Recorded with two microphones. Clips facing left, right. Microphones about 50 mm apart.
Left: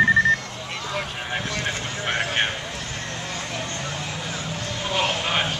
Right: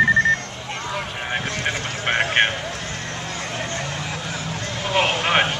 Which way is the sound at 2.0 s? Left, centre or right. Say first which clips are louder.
Right 5 dB; right.